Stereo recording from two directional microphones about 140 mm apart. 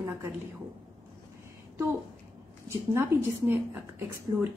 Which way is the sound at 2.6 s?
20° right (ahead or behind).